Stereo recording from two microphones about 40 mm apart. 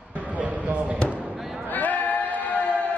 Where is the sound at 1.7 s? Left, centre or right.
Left.